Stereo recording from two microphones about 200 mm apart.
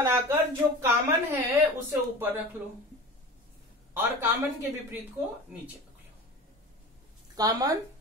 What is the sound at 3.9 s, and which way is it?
Speech, 15° right (ahead or behind).